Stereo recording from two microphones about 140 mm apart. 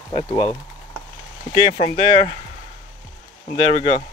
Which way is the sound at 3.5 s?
40° right (ahead or behind).